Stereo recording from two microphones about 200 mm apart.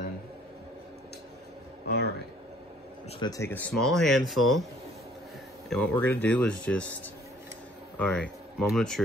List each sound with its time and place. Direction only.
1.9 s a sound: 55° left (ahead or behind)
3.1 s speech: 20° left (ahead or behind); by 4.6 s centre (ahead or behind)
5.7 s speech: 5° left (ahead or behind)
8.0 s speech: 5° left (ahead or behind)